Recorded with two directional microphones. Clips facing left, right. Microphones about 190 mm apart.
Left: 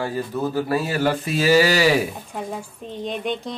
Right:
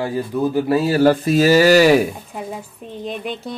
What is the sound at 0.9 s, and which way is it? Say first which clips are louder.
Speech: right 8 dB; 40° right (ahead or behind).